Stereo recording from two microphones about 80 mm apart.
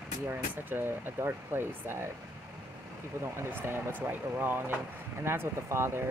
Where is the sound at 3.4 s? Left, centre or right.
Right.